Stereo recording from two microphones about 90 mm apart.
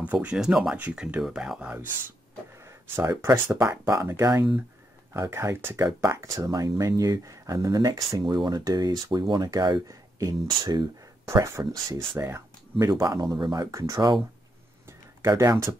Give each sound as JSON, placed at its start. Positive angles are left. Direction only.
{"t": 0.0, "sound": "speech", "side_deg": -15}
{"t": 2.6, "sound": "speech", "side_deg": -30}
{"t": 8.3, "sound": "speech", "side_deg": -50}
{"t": 9.8, "sound": "a sound", "side_deg": -40}
{"t": 10.4, "sound": "speech", "side_deg": -50}
{"t": 11.4, "sound": "speech", "side_deg": -35}
{"t": 12.7, "sound": "speech", "side_deg": -40}
{"t": 13.7, "sound": "speech", "side_deg": -35}
{"t": 14.9, "sound": "a sound", "side_deg": -30}